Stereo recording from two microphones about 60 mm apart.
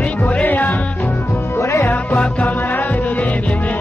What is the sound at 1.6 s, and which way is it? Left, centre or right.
Music, left.